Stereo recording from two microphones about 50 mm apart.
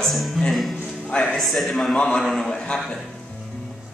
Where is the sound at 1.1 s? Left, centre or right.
Centre.